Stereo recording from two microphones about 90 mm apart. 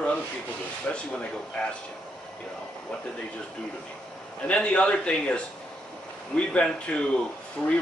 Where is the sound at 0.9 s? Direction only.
15° left (ahead or behind).